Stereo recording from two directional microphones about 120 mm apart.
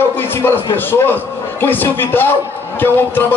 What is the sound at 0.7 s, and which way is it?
A man's voice, 15° left (ahead or behind).